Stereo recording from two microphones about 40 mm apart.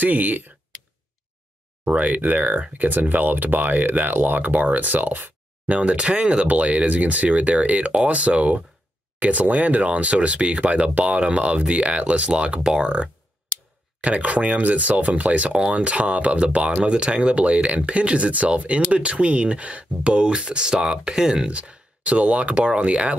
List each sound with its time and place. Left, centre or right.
0.0 s speech: right
2.0 s speech: right
5.7 s speech: right
21.5 s speech: right